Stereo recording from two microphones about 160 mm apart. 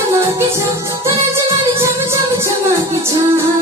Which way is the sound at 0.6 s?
15° right (ahead or behind).